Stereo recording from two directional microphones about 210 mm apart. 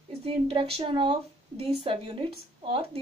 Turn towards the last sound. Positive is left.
turn(degrees=-25)  # may be behind; listen again after turning